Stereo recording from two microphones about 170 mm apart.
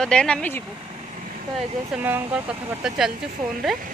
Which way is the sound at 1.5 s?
10° right (ahead or behind).